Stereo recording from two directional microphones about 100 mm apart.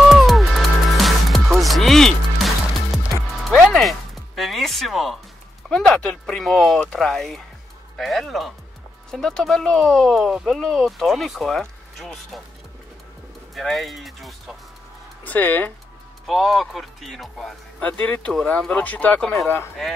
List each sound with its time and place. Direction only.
0.1 s music: centre (ahead or behind)
5.7 s speech: 5° left (ahead or behind)
13.6 s speech: centre (ahead or behind)
15.2 s speech: 15° left (ahead or behind)
16.3 s speech: centre (ahead or behind)
18.0 s speech: 20° left (ahead or behind)
18.3 s speech: 5° left (ahead or behind)
19.3 s speech: 25° left (ahead or behind)